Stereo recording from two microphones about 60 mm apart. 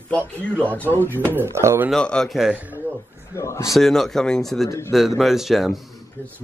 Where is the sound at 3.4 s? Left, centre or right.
Left.